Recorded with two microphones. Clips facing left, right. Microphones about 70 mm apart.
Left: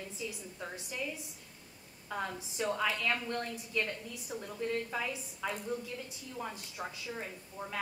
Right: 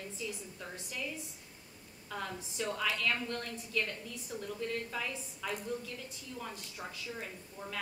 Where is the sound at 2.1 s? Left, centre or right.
Centre.